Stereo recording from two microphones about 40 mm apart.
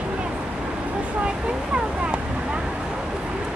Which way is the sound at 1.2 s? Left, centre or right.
Right.